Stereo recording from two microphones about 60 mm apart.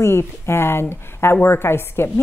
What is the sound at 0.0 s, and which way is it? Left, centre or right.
Speech, left.